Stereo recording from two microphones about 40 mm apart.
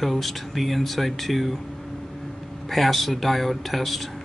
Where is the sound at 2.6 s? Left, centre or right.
Centre.